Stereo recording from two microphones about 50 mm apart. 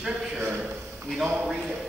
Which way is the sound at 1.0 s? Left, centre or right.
Centre.